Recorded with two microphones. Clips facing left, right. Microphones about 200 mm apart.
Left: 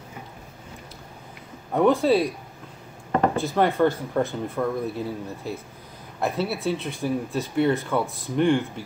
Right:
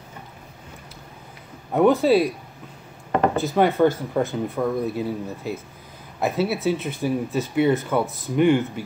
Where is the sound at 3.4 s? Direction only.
5° right (ahead or behind).